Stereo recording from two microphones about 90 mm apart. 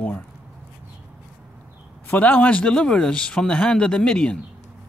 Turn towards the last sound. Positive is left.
turn(degrees=10)  # may be behind; listen again after turning